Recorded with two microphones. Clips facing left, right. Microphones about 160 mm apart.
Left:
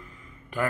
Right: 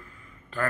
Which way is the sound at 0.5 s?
15° left (ahead or behind).